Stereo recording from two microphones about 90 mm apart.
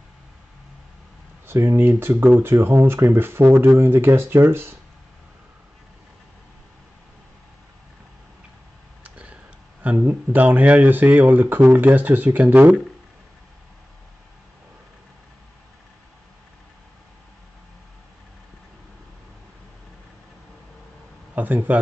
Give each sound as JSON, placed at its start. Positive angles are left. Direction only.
{"t": 1.5, "sound": "speech", "side_deg": -25}
{"t": 9.0, "sound": "speech", "side_deg": -15}
{"t": 21.4, "sound": "speech", "side_deg": -20}